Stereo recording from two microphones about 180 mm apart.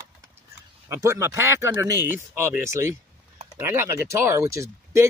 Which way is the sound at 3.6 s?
15° right (ahead or behind).